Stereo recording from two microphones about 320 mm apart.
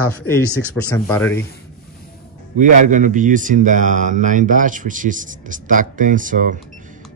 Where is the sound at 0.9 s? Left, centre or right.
Centre.